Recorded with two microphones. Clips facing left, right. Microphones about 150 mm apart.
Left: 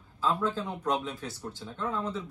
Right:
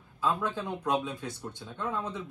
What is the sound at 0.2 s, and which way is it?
Speech, 15° right (ahead or behind).